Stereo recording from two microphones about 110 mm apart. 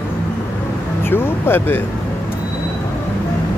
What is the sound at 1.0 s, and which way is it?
Speech, 20° left (ahead or behind).